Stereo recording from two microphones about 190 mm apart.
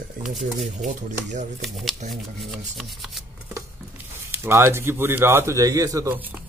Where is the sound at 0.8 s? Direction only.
40° right (ahead or behind).